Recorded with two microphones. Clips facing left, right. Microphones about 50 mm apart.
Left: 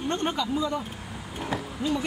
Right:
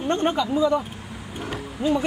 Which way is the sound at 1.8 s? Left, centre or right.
Right.